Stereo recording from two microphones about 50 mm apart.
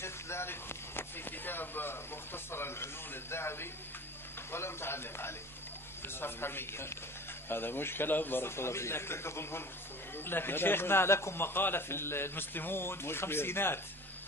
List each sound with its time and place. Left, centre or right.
0.0 s a man's voice: left
10.1 s a man's voice: left